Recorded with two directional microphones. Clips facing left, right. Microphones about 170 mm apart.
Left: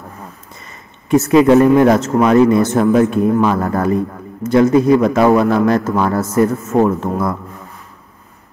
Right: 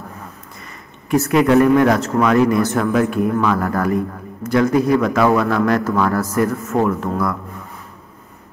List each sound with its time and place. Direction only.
1.1 s speech: 25° left (ahead or behind)